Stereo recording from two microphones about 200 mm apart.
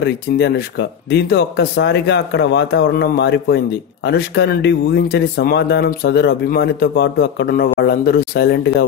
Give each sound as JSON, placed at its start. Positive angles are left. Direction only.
{"t": 0.0, "sound": "speech", "side_deg": 60}